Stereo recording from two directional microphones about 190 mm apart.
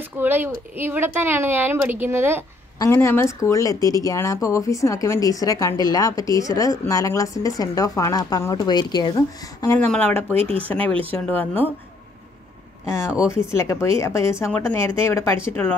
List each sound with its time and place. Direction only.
0.2 s speech: 10° right (ahead or behind)
2.8 s speech: 15° left (ahead or behind)
10.3 s speech: 30° right (ahead or behind)
10.7 s speech: 5° left (ahead or behind)
12.8 s speech: 15° left (ahead or behind)